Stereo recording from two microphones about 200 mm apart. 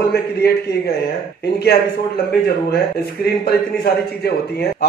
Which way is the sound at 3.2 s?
55° left (ahead or behind).